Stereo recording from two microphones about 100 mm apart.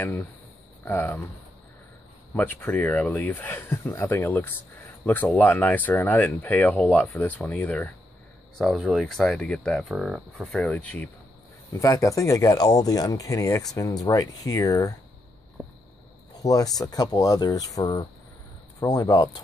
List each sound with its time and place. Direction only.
0.8 s speech: 15° left (ahead or behind)
2.3 s speech: 20° left (ahead or behind)
9.8 s speech: centre (ahead or behind)
10.6 s speech: 10° left (ahead or behind)
11.7 s speech: 30° left (ahead or behind)
16.3 s speech: 40° left (ahead or behind)